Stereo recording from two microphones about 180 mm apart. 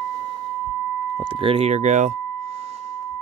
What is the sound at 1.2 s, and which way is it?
Speech, 30° right (ahead or behind).